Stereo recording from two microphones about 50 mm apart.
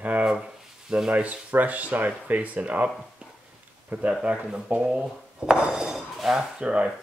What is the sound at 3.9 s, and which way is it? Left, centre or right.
Speech, right.